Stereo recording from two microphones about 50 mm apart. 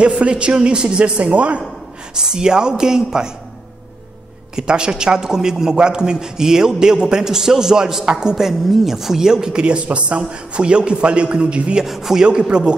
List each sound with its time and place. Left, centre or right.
0.0 s a man's voice: right
2.1 s a man's voice: centre
4.6 s a man's voice: centre
11.8 s a man's voice: centre
12.2 s a man's voice: centre